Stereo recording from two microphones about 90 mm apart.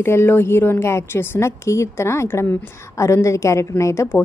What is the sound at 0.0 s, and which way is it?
A woman's voice, 30° left (ahead or behind).